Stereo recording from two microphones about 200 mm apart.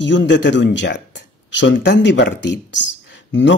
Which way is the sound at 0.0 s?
65° left (ahead or behind).